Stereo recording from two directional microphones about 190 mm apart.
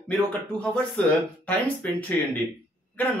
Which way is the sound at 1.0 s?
5° left (ahead or behind).